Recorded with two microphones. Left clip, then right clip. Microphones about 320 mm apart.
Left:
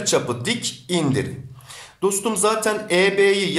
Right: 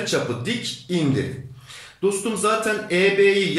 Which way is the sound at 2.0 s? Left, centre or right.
Centre.